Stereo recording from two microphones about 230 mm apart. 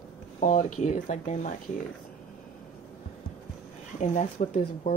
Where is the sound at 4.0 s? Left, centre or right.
Left.